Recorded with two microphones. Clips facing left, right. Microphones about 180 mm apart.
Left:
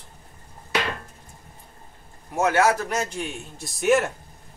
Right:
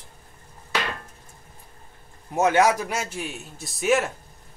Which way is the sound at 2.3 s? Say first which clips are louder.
Right 1 dB; 20° right (ahead or behind).